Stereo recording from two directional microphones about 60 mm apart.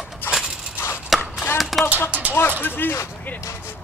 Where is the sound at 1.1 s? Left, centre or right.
Centre.